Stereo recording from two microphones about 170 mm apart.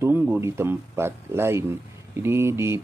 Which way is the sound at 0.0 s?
10° right (ahead or behind).